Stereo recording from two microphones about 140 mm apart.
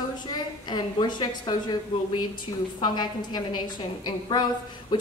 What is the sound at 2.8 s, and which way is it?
A woman's voice, 30° left (ahead or behind).